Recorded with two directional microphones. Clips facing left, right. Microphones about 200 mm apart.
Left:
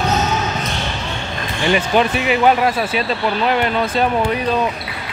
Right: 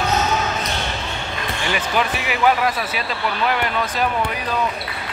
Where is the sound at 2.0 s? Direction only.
25° left (ahead or behind).